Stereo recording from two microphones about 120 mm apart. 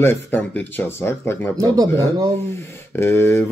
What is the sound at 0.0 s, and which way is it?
Speech, 15° left (ahead or behind).